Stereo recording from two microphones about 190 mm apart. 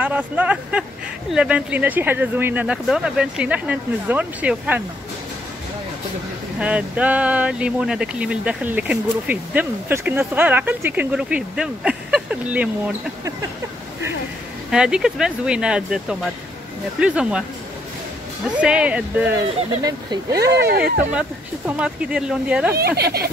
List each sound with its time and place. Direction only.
0.0 s speech: 5° right (ahead or behind)
6.6 s speech: 5° right (ahead or behind)
14.7 s speech: 5° right (ahead or behind)
18.6 s speech: 5° right (ahead or behind)
19.8 s speech: 20° right (ahead or behind)
20.4 s speech: 60° right (ahead or behind)
21.1 s speech: 5° right (ahead or behind)
22.8 s speech: 55° right (ahead or behind)